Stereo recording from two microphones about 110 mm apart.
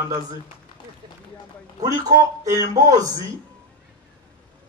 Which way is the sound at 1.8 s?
35° right (ahead or behind).